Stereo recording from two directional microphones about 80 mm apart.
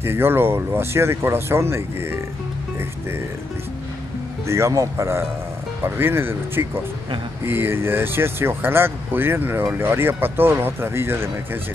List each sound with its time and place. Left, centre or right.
0.0 s speech: right
4.5 s speech: right